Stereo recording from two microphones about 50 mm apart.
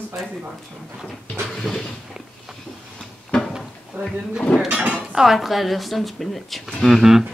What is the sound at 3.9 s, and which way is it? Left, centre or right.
Speech, right.